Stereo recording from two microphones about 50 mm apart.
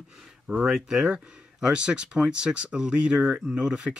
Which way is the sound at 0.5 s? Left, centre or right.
Centre.